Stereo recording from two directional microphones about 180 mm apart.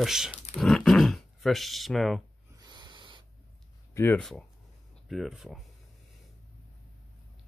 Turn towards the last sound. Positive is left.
turn(degrees=0)  # may be behind; listen again after turning